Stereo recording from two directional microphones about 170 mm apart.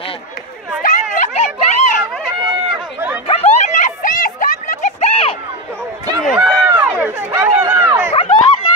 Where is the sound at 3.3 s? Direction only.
40° left (ahead or behind).